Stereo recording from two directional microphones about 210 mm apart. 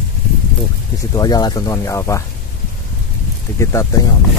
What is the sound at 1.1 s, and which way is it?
Speech, 20° left (ahead or behind).